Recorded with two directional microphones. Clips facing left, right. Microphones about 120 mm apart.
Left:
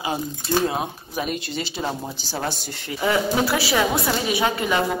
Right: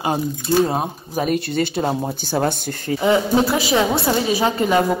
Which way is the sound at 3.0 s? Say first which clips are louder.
Right 4 dB; 25° right (ahead or behind).